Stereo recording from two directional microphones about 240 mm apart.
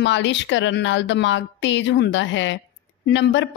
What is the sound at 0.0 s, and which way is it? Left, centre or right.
A woman's voice, left.